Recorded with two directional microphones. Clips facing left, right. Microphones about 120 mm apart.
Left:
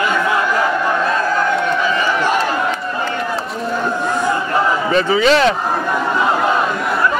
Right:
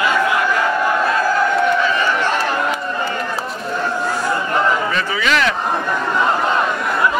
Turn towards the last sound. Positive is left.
turn(degrees=30)  # may be behind; listen again after turning